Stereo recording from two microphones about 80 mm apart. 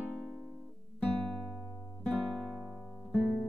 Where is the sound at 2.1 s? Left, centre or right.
Centre.